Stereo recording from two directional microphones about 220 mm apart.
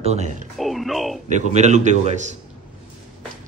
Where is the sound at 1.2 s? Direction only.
30° right (ahead or behind).